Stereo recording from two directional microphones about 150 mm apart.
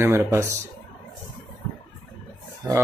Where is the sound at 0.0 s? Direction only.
15° right (ahead or behind).